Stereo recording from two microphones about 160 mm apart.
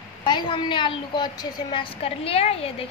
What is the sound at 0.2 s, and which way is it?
A woman's voice, 30° left (ahead or behind).